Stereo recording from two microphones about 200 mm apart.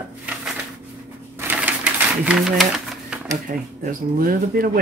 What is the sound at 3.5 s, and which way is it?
Speech, 40° right (ahead or behind).